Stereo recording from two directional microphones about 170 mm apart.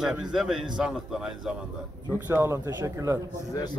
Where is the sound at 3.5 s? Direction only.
20° left (ahead or behind).